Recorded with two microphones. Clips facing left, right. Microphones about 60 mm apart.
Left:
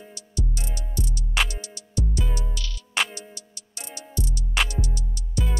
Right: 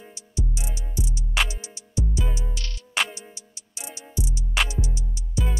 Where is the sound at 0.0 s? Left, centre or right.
Centre.